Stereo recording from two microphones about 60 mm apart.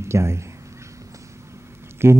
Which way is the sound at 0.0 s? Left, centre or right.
Right.